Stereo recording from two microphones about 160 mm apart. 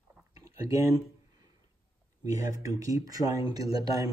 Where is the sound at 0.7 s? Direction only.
20° right (ahead or behind).